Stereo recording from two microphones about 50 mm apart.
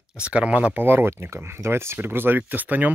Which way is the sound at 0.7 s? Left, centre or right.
Right.